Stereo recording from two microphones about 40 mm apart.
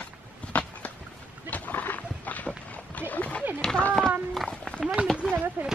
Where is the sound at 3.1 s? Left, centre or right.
Left.